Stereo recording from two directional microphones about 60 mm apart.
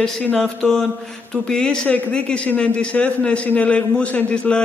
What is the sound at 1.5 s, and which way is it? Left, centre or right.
A man's voice, centre.